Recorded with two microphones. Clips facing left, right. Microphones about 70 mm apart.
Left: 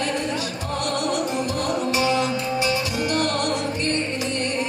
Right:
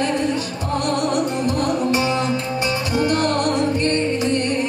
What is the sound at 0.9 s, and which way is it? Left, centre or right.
Music, right.